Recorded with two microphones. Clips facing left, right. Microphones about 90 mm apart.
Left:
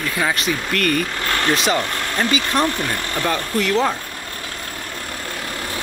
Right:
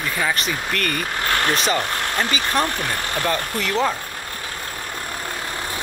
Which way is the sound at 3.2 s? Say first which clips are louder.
Left 4 dB; centre (ahead or behind).